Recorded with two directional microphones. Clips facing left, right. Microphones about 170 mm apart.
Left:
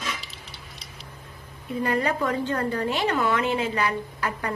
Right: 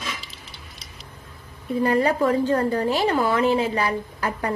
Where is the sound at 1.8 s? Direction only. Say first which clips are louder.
Right 5 dB; 35° right (ahead or behind).